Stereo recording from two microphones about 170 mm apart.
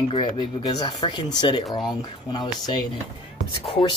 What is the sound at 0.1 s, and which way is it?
Speech, 25° left (ahead or behind).